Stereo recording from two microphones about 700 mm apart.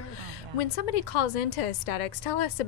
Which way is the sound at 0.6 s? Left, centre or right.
Left.